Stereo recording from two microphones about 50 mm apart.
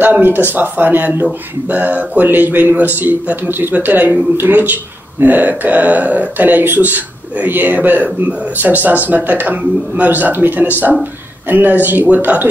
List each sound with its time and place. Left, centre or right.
0.0 s speech: right